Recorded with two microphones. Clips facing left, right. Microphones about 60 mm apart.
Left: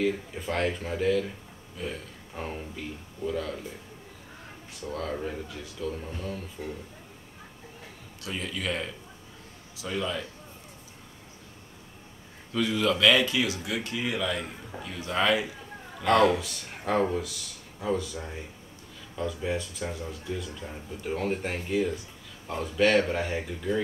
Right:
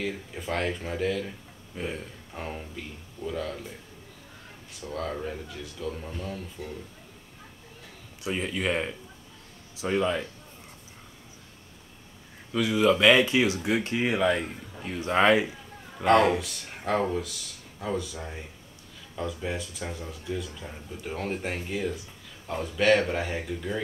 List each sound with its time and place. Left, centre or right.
0.0 s speech: centre
1.8 s speech: right
2.3 s speech: centre
4.7 s speech: centre
8.2 s speech: right
12.7 s speech: centre
16.0 s speech: centre
16.3 s speech: centre